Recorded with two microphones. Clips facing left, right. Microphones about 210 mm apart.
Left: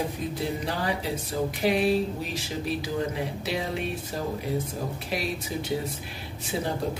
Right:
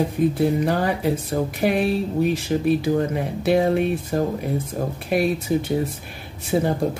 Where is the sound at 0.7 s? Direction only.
55° right (ahead or behind).